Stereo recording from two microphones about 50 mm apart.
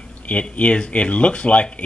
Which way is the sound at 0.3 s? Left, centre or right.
Left.